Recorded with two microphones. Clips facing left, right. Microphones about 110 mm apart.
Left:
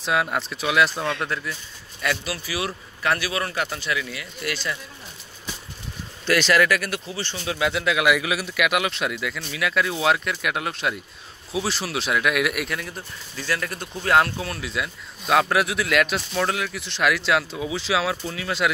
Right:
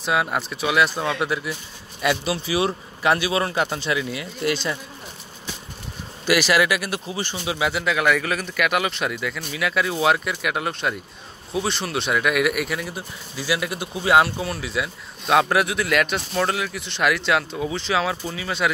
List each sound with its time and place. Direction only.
0.0 s speech: centre (ahead or behind); by 4.7 s 25° right (ahead or behind)
6.2 s speech: 10° right (ahead or behind)